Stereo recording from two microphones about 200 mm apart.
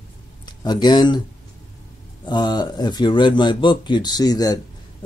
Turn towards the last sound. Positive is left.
turn(degrees=20)  # may be behind; listen again after turning